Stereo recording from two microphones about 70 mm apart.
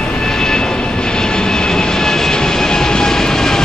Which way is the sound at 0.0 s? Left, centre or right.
Centre.